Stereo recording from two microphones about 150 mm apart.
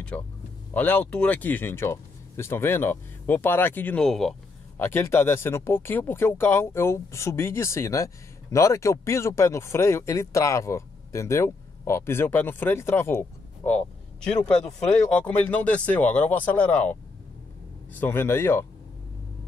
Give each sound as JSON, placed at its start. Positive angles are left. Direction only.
{"t": 0.1, "sound": "speech", "side_deg": 10}
{"t": 4.7, "sound": "speech", "side_deg": 15}
{"t": 18.0, "sound": "speech", "side_deg": 15}